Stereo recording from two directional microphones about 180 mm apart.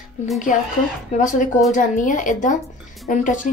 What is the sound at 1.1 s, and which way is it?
A woman's voice, 45° left (ahead or behind).